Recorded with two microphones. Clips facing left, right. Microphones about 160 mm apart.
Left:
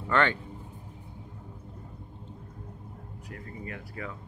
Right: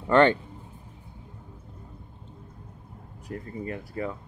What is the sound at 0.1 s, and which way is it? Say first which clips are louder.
Speech: right 7 dB; 30° right (ahead or behind).